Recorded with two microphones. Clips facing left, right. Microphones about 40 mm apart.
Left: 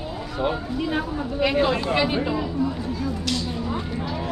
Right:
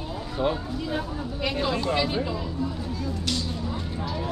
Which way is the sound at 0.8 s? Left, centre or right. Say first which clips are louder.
Left 4 dB; left.